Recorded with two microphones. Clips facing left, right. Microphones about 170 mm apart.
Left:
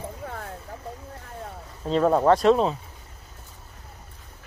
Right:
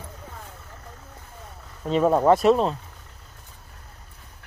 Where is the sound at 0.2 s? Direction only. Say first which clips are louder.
Left 9 dB; 65° left (ahead or behind).